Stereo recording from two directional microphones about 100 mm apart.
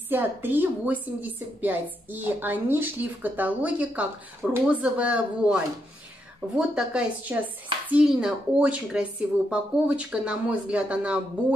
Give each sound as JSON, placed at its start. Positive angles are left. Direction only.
{"t": 0.1, "sound": "a woman's voice", "side_deg": -20}